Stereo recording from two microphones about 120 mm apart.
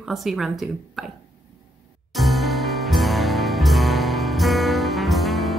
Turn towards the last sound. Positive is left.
turn(degrees=0)  # may be behind; listen again after turning